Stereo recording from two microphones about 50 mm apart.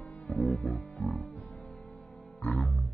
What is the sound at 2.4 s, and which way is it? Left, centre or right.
Music, left.